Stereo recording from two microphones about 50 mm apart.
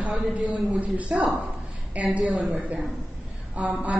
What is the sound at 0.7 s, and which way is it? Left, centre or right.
A woman's voice, right.